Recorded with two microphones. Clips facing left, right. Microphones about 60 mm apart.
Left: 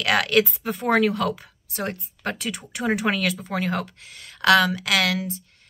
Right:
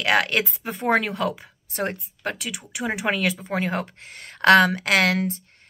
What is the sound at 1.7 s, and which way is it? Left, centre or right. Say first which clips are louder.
Speech: right 2 dB; right.